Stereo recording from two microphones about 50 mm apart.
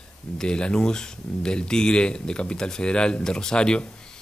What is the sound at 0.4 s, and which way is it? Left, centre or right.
Speech, centre.